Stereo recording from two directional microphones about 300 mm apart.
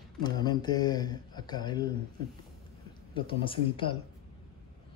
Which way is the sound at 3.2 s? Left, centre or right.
Centre.